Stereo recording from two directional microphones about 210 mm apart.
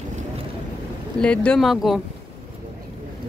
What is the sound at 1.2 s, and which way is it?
Speech, 5° left (ahead or behind).